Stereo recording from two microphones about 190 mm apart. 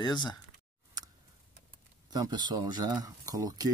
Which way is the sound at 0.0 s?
20° left (ahead or behind).